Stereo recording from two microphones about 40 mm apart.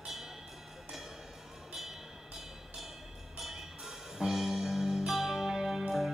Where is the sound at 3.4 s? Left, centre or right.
Centre.